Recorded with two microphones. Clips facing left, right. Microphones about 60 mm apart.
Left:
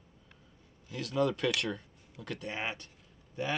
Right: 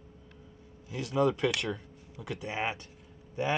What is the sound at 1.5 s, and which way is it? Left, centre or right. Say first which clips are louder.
Speech: even; centre.